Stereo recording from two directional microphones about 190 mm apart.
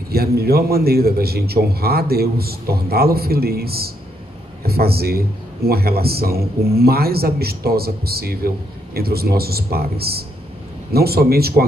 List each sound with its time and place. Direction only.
0.4 s a man's voice: 55° right (ahead or behind)